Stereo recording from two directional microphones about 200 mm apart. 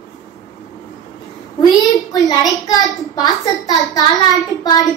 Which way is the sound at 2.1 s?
20° left (ahead or behind).